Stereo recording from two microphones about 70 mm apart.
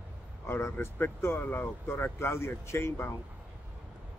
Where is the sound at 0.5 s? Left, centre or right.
Left.